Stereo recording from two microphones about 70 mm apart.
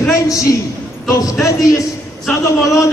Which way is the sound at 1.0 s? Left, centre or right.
Left.